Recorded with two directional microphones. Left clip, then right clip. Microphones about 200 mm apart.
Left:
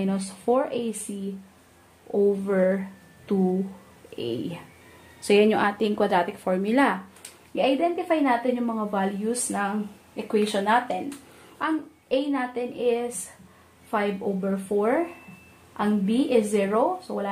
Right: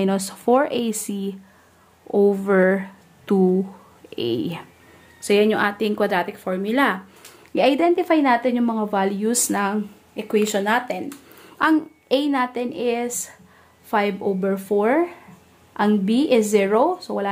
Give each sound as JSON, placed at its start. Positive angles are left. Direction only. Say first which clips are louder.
{"t": 0.0, "sound": "speech", "louder": "right 6 dB", "side_deg": -35}
{"t": 2.0, "sound": "speech", "louder": "right 5 dB", "side_deg": -35}
{"t": 5.2, "sound": "a woman's voice", "louder": "right 2 dB", "side_deg": -10}
{"t": 7.5, "sound": "speech", "louder": "right 6 dB", "side_deg": -55}
{"t": 11.5, "sound": "speech", "louder": "right 9 dB", "side_deg": -45}